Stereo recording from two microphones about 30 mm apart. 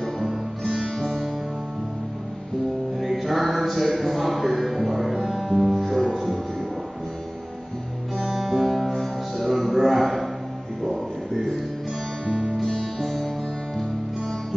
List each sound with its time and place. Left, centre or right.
0.9 s music: centre
3.0 s music: centre
8.2 s music: centre
8.6 s music: centre
13.0 s music: centre